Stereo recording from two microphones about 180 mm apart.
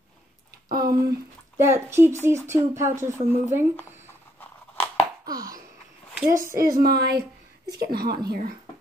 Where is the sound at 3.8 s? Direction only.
10° right (ahead or behind).